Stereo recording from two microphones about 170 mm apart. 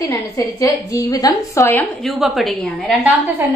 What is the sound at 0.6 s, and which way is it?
A woman's voice, 20° left (ahead or behind).